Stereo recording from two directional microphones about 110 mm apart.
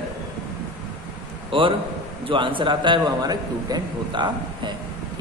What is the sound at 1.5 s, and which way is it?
A man's voice, 50° right (ahead or behind).